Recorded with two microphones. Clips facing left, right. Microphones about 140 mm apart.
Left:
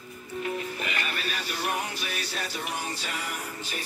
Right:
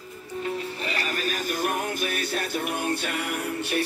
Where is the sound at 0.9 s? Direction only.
40° right (ahead or behind).